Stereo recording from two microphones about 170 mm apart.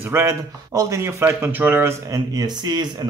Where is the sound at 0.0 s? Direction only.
15° right (ahead or behind).